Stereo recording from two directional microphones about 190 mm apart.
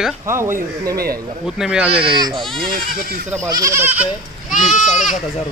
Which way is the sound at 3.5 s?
15° right (ahead or behind).